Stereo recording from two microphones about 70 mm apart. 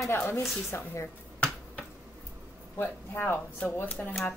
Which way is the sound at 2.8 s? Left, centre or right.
Left.